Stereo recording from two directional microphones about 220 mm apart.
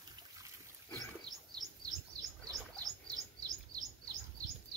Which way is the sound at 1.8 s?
15° right (ahead or behind).